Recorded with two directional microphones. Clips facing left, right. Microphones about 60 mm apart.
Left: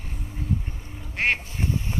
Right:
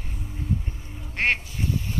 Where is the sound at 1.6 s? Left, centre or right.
Left.